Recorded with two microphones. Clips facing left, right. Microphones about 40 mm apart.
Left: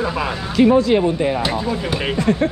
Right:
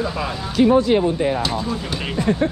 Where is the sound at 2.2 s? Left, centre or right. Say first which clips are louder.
Left 1 dB; left.